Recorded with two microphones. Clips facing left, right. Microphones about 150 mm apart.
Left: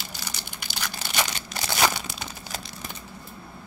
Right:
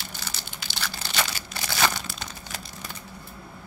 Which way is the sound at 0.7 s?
15° left (ahead or behind).